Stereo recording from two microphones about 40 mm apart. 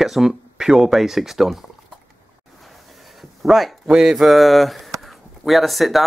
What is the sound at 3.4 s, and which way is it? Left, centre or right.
Speech, centre.